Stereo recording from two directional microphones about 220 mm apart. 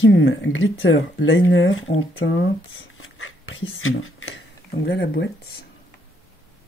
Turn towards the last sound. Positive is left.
turn(degrees=55)  # may be behind; listen again after turning